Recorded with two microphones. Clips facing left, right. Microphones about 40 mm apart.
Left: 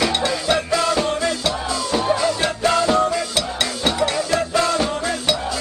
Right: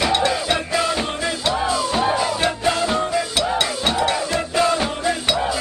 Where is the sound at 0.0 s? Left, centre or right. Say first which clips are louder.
Right 1 dB; centre.